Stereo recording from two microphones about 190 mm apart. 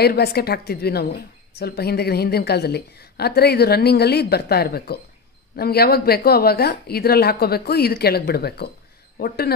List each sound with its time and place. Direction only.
0.0 s a woman's voice: 55° left (ahead or behind)